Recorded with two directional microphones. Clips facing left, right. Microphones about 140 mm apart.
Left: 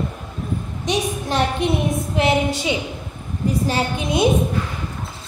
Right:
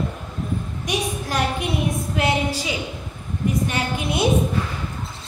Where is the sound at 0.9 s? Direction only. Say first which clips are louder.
Left 4 dB; 25° left (ahead or behind).